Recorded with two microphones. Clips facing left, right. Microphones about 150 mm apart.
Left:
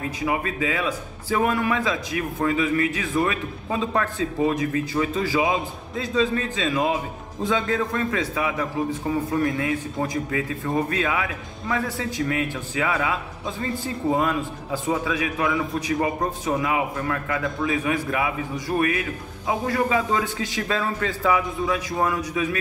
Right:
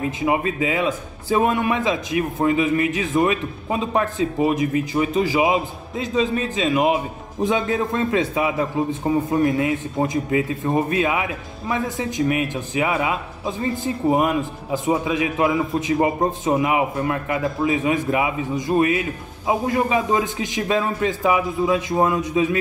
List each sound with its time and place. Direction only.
0.0 s a man's voice: 25° right (ahead or behind)